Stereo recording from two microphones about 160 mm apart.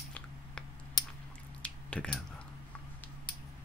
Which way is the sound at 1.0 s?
25° left (ahead or behind).